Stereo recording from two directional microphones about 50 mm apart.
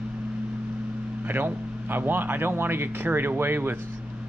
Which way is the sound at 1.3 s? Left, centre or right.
Right.